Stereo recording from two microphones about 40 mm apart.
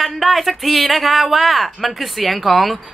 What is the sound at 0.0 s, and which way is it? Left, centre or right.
Speech, centre.